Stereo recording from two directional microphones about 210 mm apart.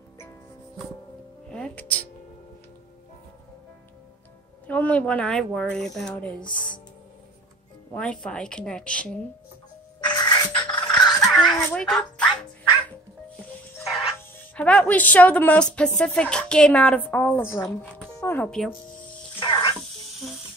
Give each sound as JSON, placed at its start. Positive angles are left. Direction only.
{"t": 1.5, "sound": "music", "side_deg": 5}
{"t": 4.6, "sound": "a woman's voice", "side_deg": 5}
{"t": 7.9, "sound": "a woman's voice", "side_deg": 5}
{"t": 9.9, "sound": "a sound", "side_deg": 20}
{"t": 10.9, "sound": "a sound", "side_deg": 0}
{"t": 13.8, "sound": "a woman's voice", "side_deg": 5}
{"t": 19.4, "sound": "music", "side_deg": 20}